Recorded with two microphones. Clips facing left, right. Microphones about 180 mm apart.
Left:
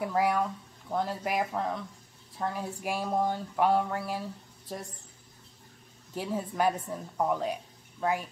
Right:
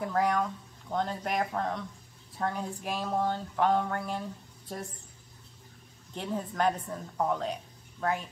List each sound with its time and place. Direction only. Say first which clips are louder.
0.0 s speech: left 1 dB; 10° left (ahead or behind)
6.1 s speech: left 1 dB; 5° left (ahead or behind)